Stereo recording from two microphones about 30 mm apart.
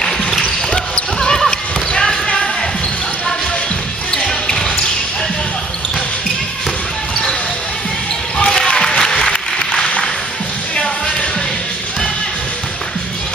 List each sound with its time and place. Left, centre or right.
0.0 s basketball bounce: centre
4.1 s basketball bounce: left
8.4 s applause: left
9.3 s a sound: left